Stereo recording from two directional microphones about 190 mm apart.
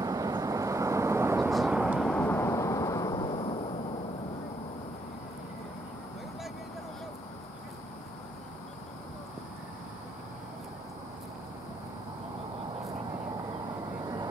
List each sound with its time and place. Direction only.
0.0 s vehicle: 20° right (ahead or behind)
1.5 s vehicle: centre (ahead or behind)
2.0 s vehicle: 10° left (ahead or behind); by 3.5 s 25° left (ahead or behind)